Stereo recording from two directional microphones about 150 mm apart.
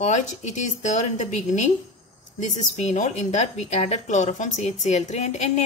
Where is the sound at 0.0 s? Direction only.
50° left (ahead or behind).